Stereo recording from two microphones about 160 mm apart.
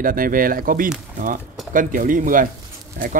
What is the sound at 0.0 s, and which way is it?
Speech, 60° right (ahead or behind).